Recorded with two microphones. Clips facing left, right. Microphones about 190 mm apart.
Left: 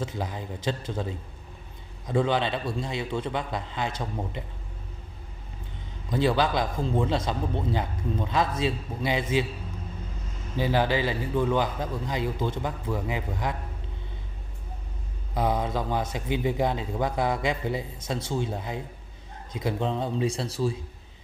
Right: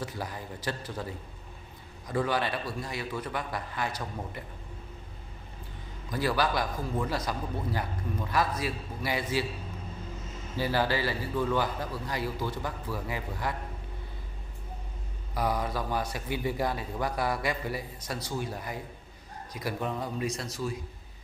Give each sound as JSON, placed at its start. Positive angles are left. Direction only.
{"t": 0.0, "sound": "a man's voice", "side_deg": 20}
{"t": 6.0, "sound": "a man's voice", "side_deg": 25}
{"t": 10.5, "sound": "a man's voice", "side_deg": 20}
{"t": 15.3, "sound": "a man's voice", "side_deg": 20}